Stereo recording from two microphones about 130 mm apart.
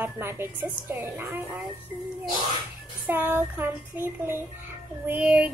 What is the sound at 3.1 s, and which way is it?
A woman's voice, 15° right (ahead or behind).